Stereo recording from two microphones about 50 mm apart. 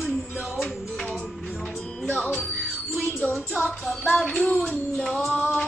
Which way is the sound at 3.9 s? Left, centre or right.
Centre.